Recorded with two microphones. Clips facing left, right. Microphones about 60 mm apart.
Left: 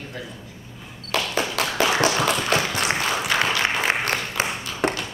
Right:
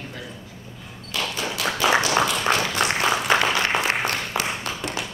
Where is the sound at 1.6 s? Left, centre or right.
Left.